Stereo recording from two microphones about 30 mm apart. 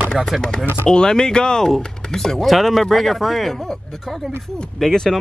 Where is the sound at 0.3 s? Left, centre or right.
Centre.